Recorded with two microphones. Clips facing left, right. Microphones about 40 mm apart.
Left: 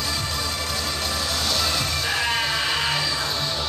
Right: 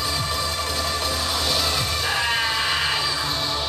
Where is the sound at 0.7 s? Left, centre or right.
Centre.